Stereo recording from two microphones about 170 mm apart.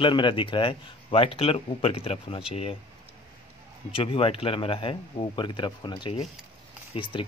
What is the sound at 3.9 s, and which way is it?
Speech, 30° left (ahead or behind).